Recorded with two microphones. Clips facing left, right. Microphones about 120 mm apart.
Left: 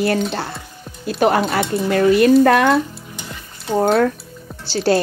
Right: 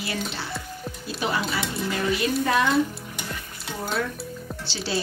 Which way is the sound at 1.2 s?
60° left (ahead or behind).